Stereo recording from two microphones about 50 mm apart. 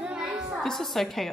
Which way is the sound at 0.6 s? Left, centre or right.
Centre.